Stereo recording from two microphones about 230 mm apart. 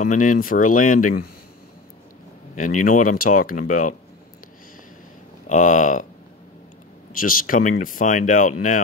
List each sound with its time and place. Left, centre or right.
0.0 s speech: left
2.5 s speech: left
5.5 s speech: left
7.2 s speech: left